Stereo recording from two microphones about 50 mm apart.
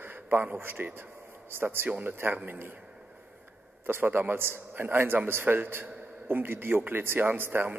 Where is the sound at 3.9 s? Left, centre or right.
Right.